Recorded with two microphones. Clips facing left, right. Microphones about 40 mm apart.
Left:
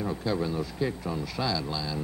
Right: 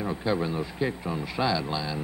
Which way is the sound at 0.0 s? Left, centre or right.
Right.